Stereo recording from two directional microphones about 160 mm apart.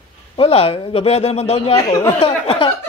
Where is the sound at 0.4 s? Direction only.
35° left (ahead or behind).